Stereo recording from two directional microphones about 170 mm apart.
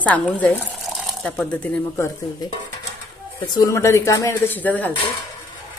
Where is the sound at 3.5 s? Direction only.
20° left (ahead or behind).